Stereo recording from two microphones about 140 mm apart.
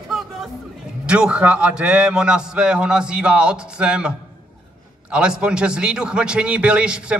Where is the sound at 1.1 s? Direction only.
5° right (ahead or behind).